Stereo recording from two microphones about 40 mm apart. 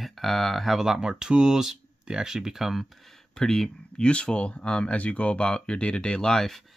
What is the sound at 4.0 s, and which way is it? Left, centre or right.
Speech, left.